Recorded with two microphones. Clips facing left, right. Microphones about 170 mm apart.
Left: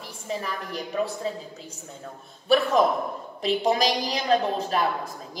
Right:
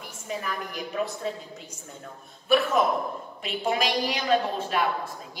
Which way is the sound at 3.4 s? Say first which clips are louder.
Left 4 dB; 35° left (ahead or behind).